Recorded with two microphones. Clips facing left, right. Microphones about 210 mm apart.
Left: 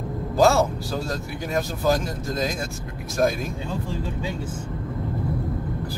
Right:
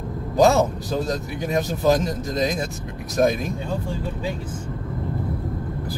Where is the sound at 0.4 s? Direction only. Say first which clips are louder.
Right 2 dB; 20° right (ahead or behind).